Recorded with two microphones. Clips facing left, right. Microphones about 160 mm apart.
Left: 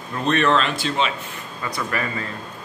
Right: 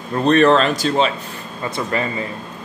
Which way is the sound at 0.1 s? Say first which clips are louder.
Right 6 dB; 35° right (ahead or behind).